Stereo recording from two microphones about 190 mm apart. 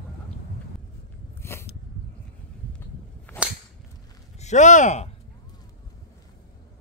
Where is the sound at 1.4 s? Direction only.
15° left (ahead or behind).